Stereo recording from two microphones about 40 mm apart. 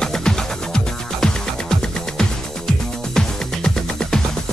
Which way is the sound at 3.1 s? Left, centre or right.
Centre.